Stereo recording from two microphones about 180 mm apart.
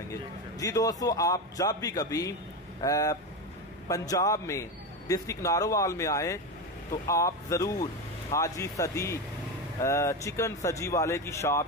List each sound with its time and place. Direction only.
0.1 s a man's voice: 20° left (ahead or behind)